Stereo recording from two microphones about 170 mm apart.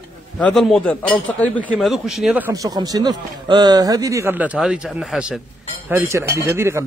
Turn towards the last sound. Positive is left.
turn(degrees=-15)  # may be behind; listen again after turning